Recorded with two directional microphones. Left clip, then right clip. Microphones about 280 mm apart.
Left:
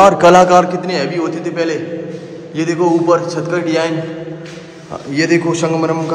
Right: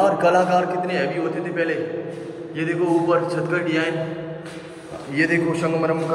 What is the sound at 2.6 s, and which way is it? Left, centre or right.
A man's voice, centre.